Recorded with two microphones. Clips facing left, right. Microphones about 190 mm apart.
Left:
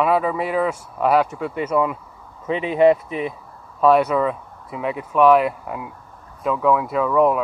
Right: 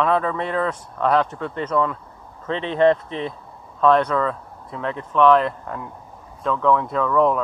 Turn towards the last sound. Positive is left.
turn(degrees=10)  # may be behind; listen again after turning